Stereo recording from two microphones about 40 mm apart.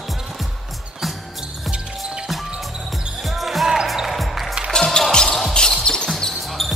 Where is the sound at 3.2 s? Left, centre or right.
Centre.